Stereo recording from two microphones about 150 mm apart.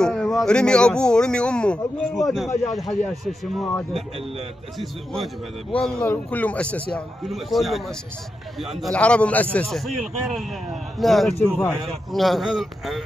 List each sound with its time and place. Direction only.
0.0 s a man's voice: 5° left (ahead or behind)